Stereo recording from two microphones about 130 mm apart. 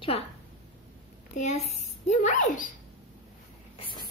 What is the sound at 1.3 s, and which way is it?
A woman's voice, 60° left (ahead or behind).